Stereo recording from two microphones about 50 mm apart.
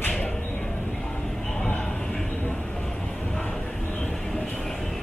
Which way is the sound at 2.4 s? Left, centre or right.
Centre.